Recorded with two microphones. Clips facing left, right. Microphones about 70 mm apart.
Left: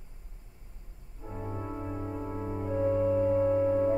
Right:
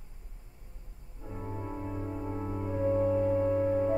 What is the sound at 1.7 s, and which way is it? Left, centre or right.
Music, centre.